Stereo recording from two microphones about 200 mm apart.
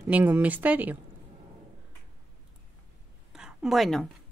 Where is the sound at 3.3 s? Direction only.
5° right (ahead or behind).